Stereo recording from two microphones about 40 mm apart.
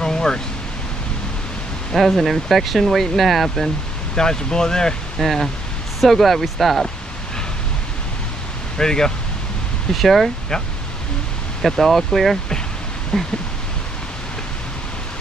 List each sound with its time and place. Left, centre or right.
0.0 s a sound: centre
2.0 s speech: centre
4.1 s speech: centre
5.2 s speech: centre
8.7 s speech: centre
9.9 s speech: centre
11.6 s speech: centre
13.1 s speech: centre